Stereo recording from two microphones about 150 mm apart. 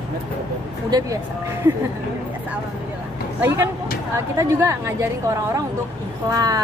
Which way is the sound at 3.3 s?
15° right (ahead or behind).